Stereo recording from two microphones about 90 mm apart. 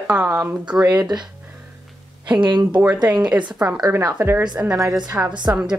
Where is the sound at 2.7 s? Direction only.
15° right (ahead or behind).